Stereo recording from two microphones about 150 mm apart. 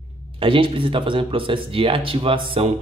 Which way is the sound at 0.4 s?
35° right (ahead or behind).